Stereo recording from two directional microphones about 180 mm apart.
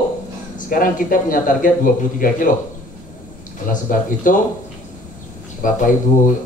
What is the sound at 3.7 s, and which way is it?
Speech, 50° left (ahead or behind).